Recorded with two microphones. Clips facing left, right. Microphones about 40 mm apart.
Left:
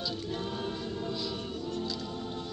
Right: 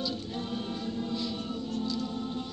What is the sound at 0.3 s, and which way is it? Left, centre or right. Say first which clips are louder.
Choir: even; centre.